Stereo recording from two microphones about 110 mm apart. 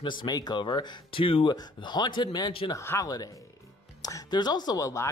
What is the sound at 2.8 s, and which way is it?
Speech, 20° left (ahead or behind).